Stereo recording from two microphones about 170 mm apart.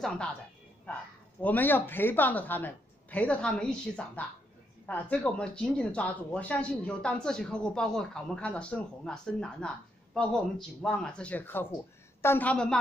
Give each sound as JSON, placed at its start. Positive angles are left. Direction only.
{"t": 1.4, "sound": "a woman's voice", "side_deg": 10}